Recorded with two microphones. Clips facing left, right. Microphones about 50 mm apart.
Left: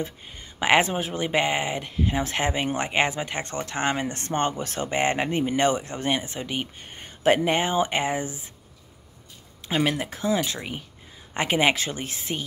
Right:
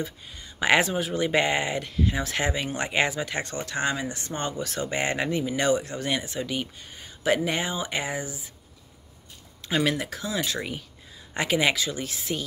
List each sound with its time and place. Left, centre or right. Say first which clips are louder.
0.0 s speech: left 1 dB; left
6.9 s speech: left 4 dB; left
9.8 s speech: left 1 dB; left
11.3 s speech: left 2 dB; left